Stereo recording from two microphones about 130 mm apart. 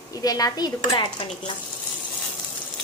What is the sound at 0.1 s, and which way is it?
Frying, 30° left (ahead or behind).